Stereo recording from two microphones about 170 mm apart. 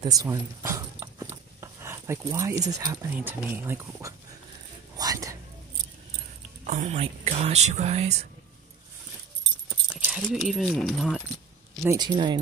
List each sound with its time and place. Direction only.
0.2 s a sound: 20° right (ahead or behind)
2.8 s speech: 20° right (ahead or behind)
4.9 s whispering: 20° right (ahead or behind)
6.6 s speech: 45° right (ahead or behind)
9.7 s keys jangling: 5° right (ahead or behind)
11.9 s speech: 25° right (ahead or behind)